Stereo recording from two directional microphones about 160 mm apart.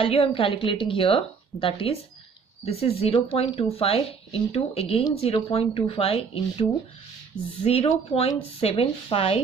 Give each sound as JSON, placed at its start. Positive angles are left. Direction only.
{"t": 0.0, "sound": "speech", "side_deg": 35}